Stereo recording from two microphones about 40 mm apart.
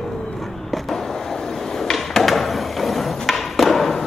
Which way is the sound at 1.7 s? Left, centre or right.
Centre.